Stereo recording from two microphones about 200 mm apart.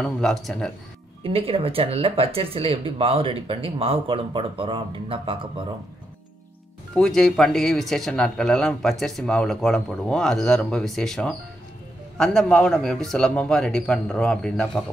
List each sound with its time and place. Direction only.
0.0 s speech: centre (ahead or behind)
1.2 s speech: 30° right (ahead or behind)
7.0 s speech: centre (ahead or behind)